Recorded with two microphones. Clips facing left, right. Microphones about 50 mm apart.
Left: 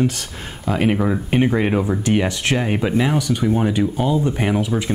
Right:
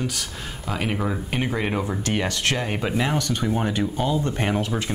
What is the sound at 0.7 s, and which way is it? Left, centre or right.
Speech, centre.